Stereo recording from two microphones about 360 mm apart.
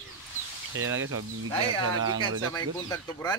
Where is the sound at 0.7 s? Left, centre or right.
Right.